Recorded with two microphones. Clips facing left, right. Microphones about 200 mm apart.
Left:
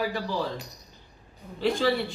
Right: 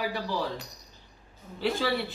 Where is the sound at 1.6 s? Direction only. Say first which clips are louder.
Left 3 dB; 5° right (ahead or behind).